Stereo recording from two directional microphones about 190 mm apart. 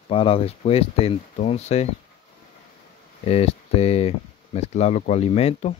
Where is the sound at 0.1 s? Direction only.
30° left (ahead or behind).